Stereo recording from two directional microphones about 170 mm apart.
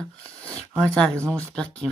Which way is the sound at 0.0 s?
5° left (ahead or behind).